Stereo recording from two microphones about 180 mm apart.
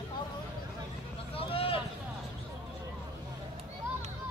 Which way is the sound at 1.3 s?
30° left (ahead or behind).